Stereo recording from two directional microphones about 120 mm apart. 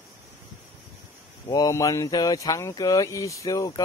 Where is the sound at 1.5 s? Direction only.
30° left (ahead or behind).